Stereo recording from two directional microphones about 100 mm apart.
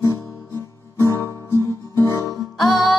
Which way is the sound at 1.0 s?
25° left (ahead or behind).